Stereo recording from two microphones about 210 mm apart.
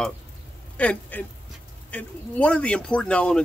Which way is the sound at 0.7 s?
5° left (ahead or behind).